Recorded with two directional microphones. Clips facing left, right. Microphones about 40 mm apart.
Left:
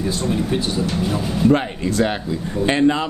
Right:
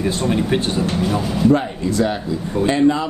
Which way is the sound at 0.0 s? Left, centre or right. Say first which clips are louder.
Right 2 dB; right.